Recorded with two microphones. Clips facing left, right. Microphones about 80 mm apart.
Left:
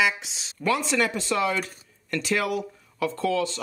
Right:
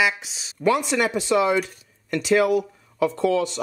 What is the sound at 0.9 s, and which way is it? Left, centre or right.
Speech, centre.